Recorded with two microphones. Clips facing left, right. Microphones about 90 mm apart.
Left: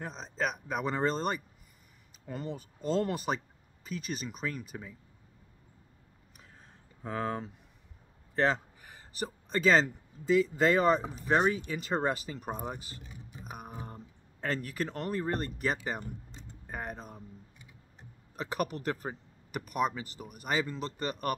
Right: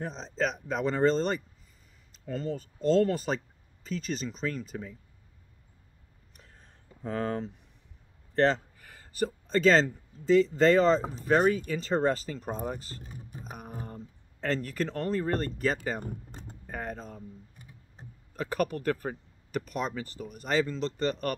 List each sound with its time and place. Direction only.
0.0 s speech: 5° left (ahead or behind)
7.0 s speech: 5° left (ahead or behind)
8.8 s a man's voice: 15° left (ahead or behind)
13.0 s speech: 45° right (ahead or behind)
13.5 s a sound: 10° left (ahead or behind)
13.8 s speech: 10° left (ahead or behind)
16.0 s speech: 50° right (ahead or behind)
16.6 s speech: 10° left (ahead or behind)
18.3 s speech: 15° left (ahead or behind)